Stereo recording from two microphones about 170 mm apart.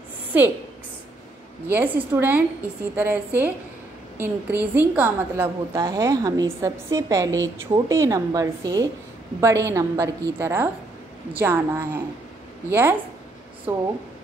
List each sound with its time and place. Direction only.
0.3 s a woman's voice: 10° right (ahead or behind)
2.0 s a woman's voice: 10° right (ahead or behind)